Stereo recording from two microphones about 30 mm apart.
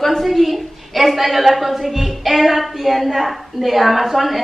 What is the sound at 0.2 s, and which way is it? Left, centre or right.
A woman's voice, centre.